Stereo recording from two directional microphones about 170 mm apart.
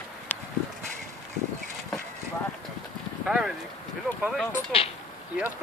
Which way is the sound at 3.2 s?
5° right (ahead or behind).